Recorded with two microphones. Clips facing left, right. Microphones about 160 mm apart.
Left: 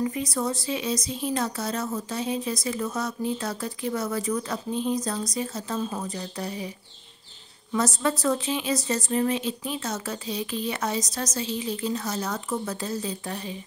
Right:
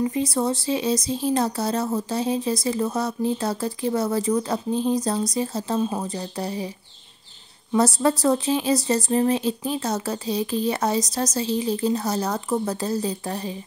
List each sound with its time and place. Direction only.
0.0 s speech: 30° right (ahead or behind)
7.7 s speech: 35° right (ahead or behind)